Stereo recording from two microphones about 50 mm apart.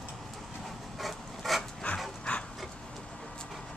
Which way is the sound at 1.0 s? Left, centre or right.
Centre.